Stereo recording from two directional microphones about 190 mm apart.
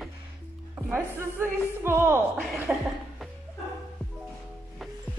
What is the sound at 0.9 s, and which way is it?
Music, 10° right (ahead or behind).